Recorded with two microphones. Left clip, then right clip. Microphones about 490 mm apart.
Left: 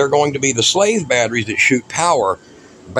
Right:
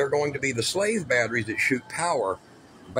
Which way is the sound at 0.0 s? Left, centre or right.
Right.